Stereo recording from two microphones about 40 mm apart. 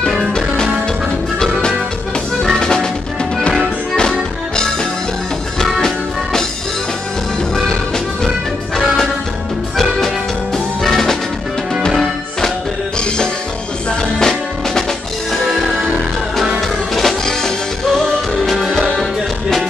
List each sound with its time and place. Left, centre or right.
1.4 s music: centre
5.8 s music: centre
7.5 s music: centre
14.2 s music: centre
15.4 s music: centre